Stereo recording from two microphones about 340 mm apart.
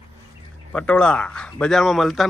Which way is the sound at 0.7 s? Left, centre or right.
Centre.